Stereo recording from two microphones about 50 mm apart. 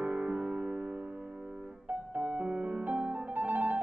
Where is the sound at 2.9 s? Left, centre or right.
Right.